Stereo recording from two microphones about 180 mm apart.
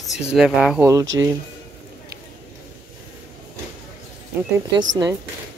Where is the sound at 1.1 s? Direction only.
15° right (ahead or behind).